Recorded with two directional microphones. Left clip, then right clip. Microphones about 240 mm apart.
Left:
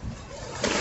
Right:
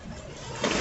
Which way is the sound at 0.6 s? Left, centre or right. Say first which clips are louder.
Left 1 dB; left.